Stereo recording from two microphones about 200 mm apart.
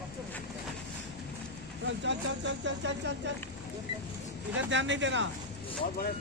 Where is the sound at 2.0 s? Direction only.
65° right (ahead or behind).